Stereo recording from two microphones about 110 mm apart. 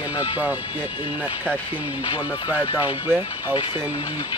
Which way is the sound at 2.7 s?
15° right (ahead or behind).